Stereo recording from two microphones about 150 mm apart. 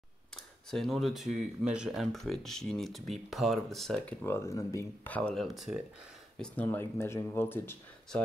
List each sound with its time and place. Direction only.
0.7 s speech: centre (ahead or behind)
4.2 s speech: 15° left (ahead or behind)
5.0 s speech: 10° left (ahead or behind)